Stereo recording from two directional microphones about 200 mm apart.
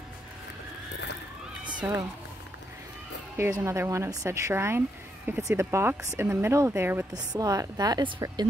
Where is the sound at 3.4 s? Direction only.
15° right (ahead or behind).